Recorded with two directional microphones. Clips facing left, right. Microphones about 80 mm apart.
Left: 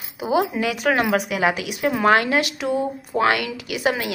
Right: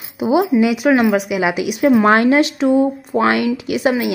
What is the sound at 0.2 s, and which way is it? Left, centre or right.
Speech, right.